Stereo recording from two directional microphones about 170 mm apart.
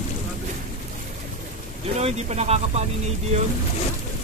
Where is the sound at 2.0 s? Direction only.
40° right (ahead or behind).